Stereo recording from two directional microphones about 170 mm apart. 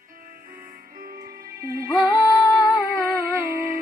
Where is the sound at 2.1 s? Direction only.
20° left (ahead or behind).